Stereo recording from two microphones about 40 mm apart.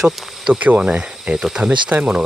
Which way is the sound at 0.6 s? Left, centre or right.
Right.